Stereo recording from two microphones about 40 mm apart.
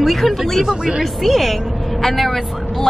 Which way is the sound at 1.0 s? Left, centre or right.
Centre.